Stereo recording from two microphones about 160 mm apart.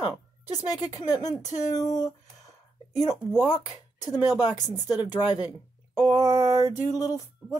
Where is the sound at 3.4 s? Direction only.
25° left (ahead or behind).